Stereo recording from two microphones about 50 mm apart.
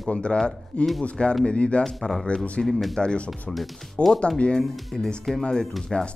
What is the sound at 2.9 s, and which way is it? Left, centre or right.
Speech, left.